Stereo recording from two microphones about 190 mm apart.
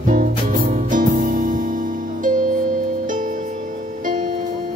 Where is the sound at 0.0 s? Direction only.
45° right (ahead or behind).